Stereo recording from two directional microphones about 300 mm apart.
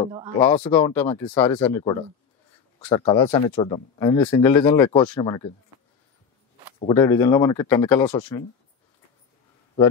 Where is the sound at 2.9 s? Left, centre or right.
Centre.